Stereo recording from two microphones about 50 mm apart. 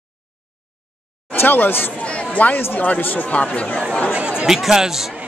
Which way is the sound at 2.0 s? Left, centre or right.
Left.